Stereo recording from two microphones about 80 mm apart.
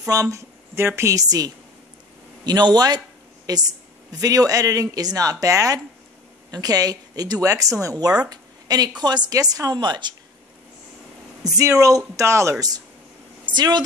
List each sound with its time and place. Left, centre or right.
0.1 s a woman's voice: right
2.4 s a woman's voice: right
9.3 s a woman's voice: right
11.4 s speech: right
13.5 s speech: right